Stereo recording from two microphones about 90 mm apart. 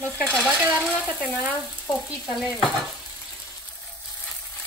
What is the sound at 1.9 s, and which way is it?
Frying, centre (ahead or behind).